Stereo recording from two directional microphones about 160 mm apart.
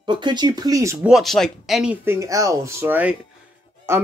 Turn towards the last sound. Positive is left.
turn(degrees=-15)  # may be behind; listen again after turning